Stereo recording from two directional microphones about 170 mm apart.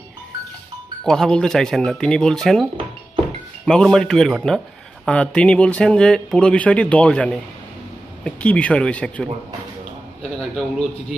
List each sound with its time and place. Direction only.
1.0 s speech: 5° left (ahead or behind)
3.6 s speech: 5° left (ahead or behind)